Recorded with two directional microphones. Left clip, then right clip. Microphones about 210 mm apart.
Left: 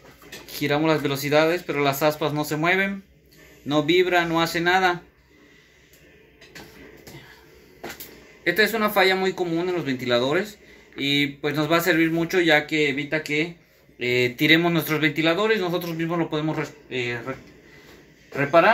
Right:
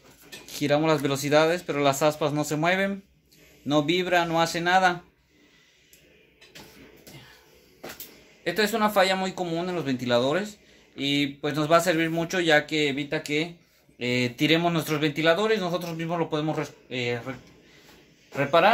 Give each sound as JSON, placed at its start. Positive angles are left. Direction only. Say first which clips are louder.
{"t": 0.5, "sound": "speech", "louder": "left 1 dB", "side_deg": -50}
{"t": 8.5, "sound": "speech", "louder": "left 3 dB", "side_deg": -55}
{"t": 18.3, "sound": "speech", "louder": "left 3 dB", "side_deg": -55}